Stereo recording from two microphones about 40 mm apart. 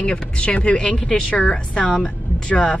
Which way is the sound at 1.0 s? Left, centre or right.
Centre.